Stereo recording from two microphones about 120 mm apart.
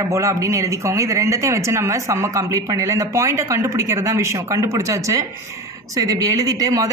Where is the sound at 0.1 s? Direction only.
25° right (ahead or behind).